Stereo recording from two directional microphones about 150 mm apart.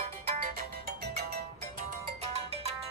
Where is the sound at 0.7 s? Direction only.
90° right.